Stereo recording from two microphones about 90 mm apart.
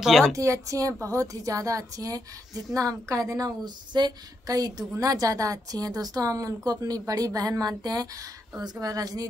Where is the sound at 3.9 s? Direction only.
55° right (ahead or behind).